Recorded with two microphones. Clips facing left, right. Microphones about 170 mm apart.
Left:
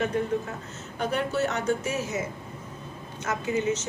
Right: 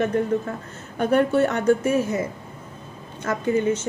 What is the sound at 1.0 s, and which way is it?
A woman's voice, 55° right (ahead or behind).